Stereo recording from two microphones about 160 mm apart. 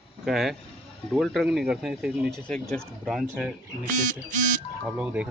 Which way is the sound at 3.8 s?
55° right (ahead or behind).